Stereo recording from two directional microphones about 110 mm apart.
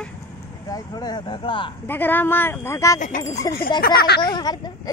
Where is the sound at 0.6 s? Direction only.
35° left (ahead or behind).